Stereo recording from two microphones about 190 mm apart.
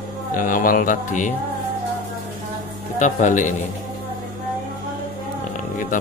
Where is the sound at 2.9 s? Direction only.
40° left (ahead or behind).